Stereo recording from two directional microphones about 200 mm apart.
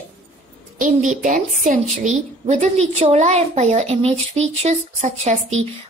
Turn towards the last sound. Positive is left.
turn(degrees=-35)  # may be behind; listen again after turning